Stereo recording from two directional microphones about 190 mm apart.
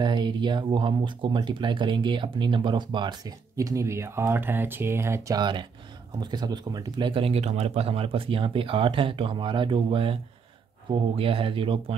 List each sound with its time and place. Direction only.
0.0 s speech: 25° right (ahead or behind)